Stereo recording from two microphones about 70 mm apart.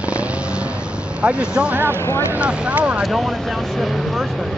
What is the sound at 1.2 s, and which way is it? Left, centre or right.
Speech, centre.